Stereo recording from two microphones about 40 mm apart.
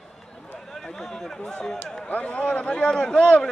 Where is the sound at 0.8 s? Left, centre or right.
Centre.